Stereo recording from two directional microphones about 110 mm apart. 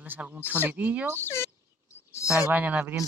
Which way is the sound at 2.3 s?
15° right (ahead or behind).